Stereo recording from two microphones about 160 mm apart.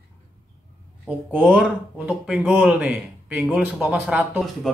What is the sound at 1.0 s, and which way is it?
Speech, 5° right (ahead or behind).